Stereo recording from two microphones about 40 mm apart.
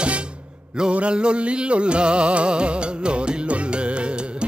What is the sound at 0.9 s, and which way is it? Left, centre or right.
Music, right.